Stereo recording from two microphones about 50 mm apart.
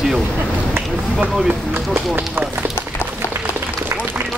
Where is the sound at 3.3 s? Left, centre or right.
Right.